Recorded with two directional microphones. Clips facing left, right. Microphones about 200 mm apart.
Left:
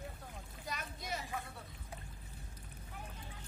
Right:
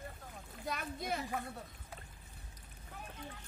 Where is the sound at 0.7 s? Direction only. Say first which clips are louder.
Right 5 dB; 55° right (ahead or behind).